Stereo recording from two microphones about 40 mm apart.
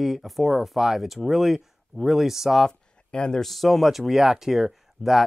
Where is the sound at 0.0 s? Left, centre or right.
Centre.